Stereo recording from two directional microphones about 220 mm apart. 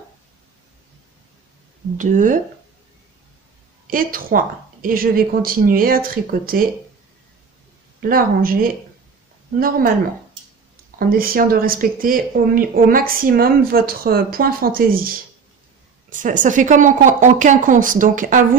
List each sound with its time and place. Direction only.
2.0 s speech: 35° right (ahead or behind)
3.8 s speech: 40° right (ahead or behind)
8.1 s speech: 40° right (ahead or behind)
11.0 s speech: 40° right (ahead or behind)